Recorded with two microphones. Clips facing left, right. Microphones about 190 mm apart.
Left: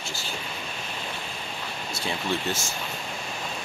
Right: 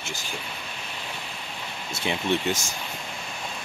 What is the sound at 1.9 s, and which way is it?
Speech, 20° right (ahead or behind).